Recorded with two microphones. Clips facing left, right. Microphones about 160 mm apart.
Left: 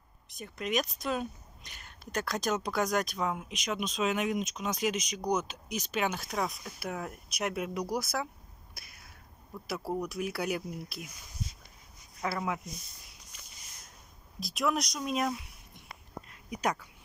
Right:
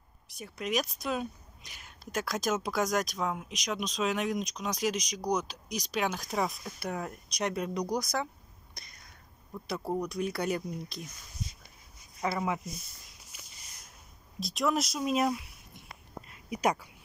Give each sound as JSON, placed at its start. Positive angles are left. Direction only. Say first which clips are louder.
{"t": 0.4, "sound": "speech", "louder": "even", "side_deg": 0}
{"t": 8.7, "sound": "a sound", "louder": "right 1 dB", "side_deg": 5}
{"t": 9.7, "sound": "speech", "louder": "right 1 dB", "side_deg": 0}
{"t": 12.2, "sound": "speech", "louder": "right 2 dB", "side_deg": 0}
{"t": 13.3, "sound": "a sound", "louder": "right 3 dB", "side_deg": -5}
{"t": 14.4, "sound": "speech", "louder": "right 1 dB", "side_deg": 0}